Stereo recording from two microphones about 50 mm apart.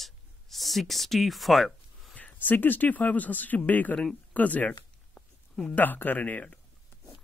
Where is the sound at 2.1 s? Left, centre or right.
Left.